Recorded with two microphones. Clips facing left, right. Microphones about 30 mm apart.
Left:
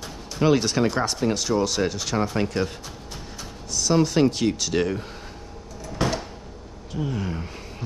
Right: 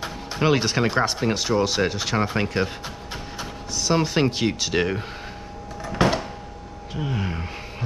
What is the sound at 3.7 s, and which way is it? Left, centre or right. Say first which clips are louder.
Speech: left 1 dB; centre.